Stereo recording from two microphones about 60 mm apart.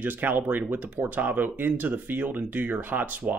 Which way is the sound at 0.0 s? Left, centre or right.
Right.